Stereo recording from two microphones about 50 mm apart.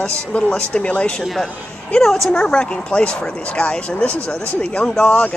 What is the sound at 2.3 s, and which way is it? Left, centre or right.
Speech, centre.